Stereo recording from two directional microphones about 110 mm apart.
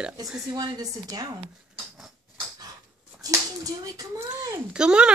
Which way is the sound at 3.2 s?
35° right (ahead or behind).